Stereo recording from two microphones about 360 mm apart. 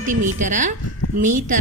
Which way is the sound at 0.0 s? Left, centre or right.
Right.